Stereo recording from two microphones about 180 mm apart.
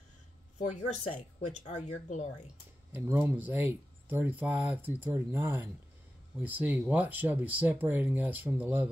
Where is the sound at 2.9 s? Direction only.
10° right (ahead or behind).